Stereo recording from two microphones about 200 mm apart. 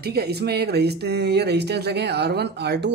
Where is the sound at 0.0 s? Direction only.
55° right (ahead or behind).